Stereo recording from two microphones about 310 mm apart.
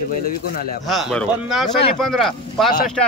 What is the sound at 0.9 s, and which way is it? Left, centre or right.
Speech, centre.